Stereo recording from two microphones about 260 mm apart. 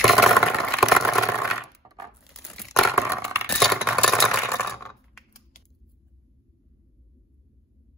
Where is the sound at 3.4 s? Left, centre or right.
Centre.